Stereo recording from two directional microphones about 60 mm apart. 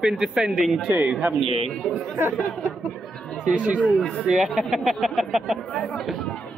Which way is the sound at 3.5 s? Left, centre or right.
Right.